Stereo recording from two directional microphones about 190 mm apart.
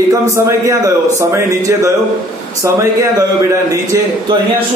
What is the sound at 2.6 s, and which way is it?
Speech, 15° right (ahead or behind).